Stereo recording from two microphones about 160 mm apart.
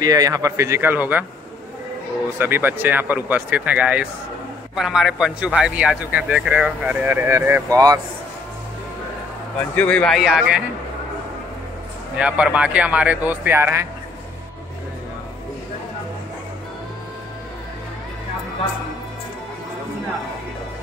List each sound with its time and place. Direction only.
0.0 s a man's voice: 20° right (ahead or behind)
2.3 s a man's voice: 15° right (ahead or behind)
9.8 s a man's voice: 10° left (ahead or behind)
12.2 s a man's voice: 5° right (ahead or behind)